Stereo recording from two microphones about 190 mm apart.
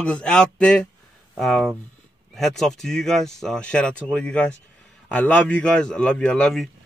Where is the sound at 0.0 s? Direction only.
5° left (ahead or behind).